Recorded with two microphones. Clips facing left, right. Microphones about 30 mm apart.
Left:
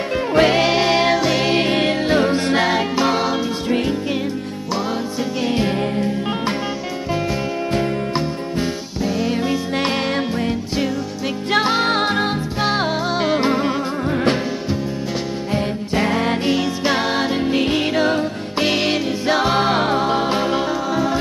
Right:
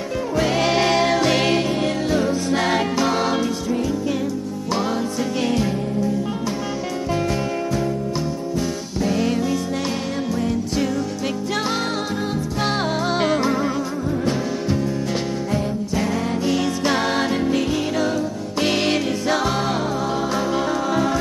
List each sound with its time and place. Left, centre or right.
0.3 s music: left
0.6 s music: centre
1.1 s music: centre
1.6 s music: left
2.6 s music: centre
9.0 s music: centre
11.5 s music: left
12.6 s music: centre
13.4 s music: left
15.5 s music: left
16.5 s music: centre; by 18.2 s left
18.6 s music: centre
19.2 s music: left